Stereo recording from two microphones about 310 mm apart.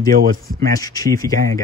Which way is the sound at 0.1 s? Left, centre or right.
Right.